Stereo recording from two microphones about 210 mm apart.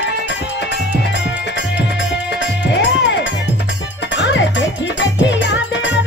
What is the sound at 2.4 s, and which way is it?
Music, 55° left (ahead or behind).